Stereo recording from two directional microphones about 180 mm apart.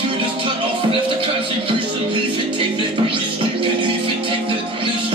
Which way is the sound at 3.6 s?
30° right (ahead or behind).